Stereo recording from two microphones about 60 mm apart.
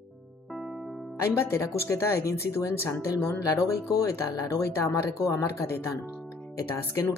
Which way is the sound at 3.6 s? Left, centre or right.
Left.